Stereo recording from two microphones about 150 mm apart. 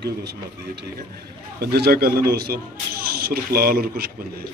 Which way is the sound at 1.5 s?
90° right.